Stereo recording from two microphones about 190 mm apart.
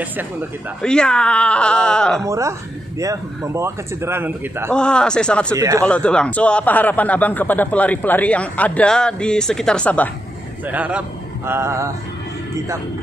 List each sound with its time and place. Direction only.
0.8 s speech: 5° left (ahead or behind)
2.2 s a man's voice: 15° right (ahead or behind)
4.7 s speech: 5° left (ahead or behind)
5.6 s a man's voice: 15° right (ahead or behind)
5.9 s a man's voice: 5° left (ahead or behind)
10.7 s a man's voice: 5° right (ahead or behind)